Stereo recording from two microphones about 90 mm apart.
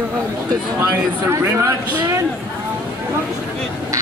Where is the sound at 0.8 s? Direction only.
30° right (ahead or behind).